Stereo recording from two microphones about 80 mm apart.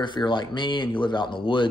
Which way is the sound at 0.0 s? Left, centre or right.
Left.